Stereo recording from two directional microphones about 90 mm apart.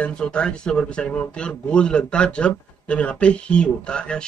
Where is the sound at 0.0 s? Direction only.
10° left (ahead or behind).